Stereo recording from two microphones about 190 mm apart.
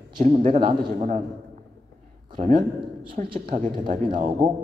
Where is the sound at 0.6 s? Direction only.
30° right (ahead or behind).